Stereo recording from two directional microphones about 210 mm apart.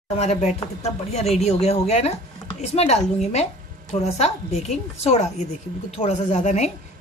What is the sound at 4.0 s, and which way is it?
A woman's voice, 30° left (ahead or behind).